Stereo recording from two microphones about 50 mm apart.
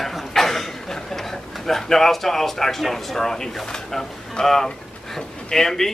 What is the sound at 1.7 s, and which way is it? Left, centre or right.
Speech, centre.